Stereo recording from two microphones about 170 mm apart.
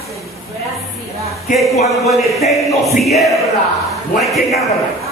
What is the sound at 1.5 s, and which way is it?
Speech, 50° left (ahead or behind).